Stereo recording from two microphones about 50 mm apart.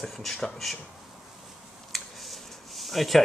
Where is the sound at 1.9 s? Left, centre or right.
Centre.